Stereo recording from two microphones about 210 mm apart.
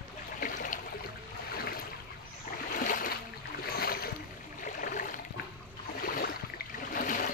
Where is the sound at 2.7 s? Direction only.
40° left (ahead or behind).